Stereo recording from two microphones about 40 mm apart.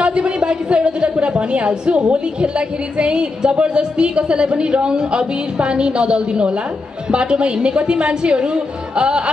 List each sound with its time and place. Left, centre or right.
0.0 s a woman's voice: right